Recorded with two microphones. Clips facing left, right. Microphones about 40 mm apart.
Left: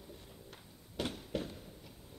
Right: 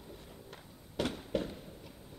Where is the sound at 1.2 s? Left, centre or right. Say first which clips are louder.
Right 4 dB; centre.